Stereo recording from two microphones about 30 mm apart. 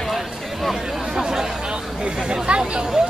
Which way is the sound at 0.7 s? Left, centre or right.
Centre.